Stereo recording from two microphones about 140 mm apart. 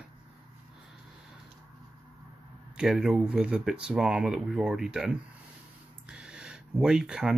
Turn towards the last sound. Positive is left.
turn(degrees=-5)  # may be behind; listen again after turning